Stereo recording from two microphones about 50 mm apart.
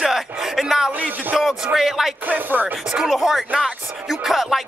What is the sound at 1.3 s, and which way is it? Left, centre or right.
Music, centre.